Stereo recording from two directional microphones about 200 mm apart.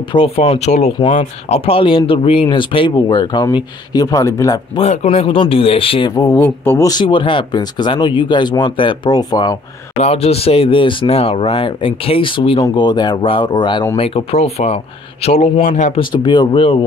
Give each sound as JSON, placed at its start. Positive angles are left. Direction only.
{"t": 0.1, "sound": "speech", "side_deg": 30}
{"t": 4.7, "sound": "speech", "side_deg": 30}
{"t": 9.9, "sound": "speech", "side_deg": 30}